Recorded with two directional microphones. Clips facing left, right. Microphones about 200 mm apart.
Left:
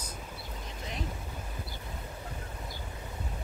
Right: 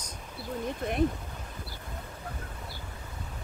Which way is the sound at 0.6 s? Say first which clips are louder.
Right 11 dB; 55° right (ahead or behind).